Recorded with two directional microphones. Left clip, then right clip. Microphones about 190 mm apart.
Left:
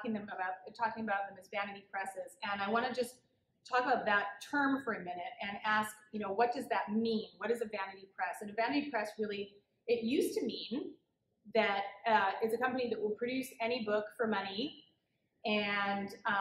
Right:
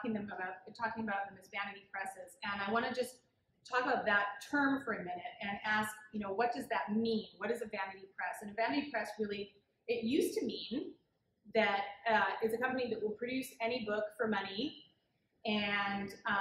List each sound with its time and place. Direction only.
0.0 s a woman's voice: 15° left (ahead or behind)
11.5 s speech: 20° left (ahead or behind)